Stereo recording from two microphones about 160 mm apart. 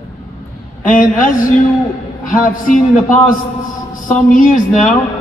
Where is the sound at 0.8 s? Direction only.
55° left (ahead or behind).